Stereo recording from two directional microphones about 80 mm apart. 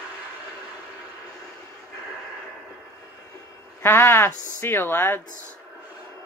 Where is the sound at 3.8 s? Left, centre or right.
Left.